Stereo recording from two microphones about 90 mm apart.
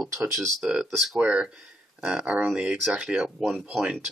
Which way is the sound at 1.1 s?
10° right (ahead or behind).